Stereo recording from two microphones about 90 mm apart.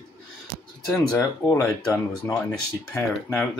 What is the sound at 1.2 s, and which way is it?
Speech, 40° left (ahead or behind).